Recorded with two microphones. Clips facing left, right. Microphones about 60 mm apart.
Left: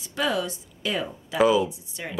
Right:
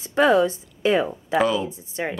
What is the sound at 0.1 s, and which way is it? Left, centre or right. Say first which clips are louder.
A woman's voice: right 9 dB; right.